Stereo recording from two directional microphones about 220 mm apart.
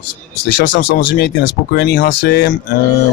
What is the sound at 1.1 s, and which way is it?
Speech, 50° left (ahead or behind).